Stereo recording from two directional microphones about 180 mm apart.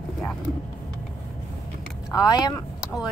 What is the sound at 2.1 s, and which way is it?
Speech, 20° left (ahead or behind).